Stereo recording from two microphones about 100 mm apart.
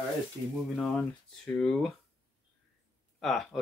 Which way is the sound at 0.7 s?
10° left (ahead or behind).